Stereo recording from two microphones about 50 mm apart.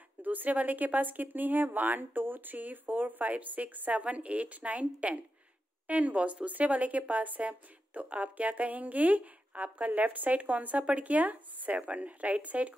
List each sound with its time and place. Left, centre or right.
0.2 s speech: right